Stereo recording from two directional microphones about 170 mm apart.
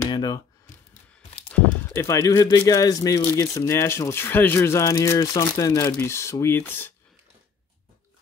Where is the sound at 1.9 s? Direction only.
15° left (ahead or behind).